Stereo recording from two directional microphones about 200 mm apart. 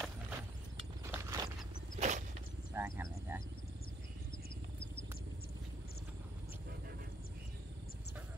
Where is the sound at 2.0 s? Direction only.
35° right (ahead or behind).